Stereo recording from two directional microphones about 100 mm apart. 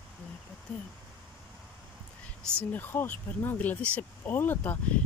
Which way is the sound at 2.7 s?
20° left (ahead or behind).